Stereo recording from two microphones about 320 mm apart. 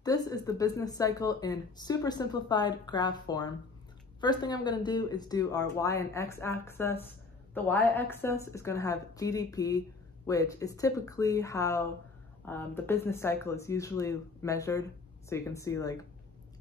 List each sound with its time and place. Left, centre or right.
0.0 s a woman's voice: centre